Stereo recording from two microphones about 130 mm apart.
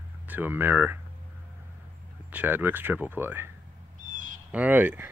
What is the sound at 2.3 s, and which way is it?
Speech, 15° right (ahead or behind).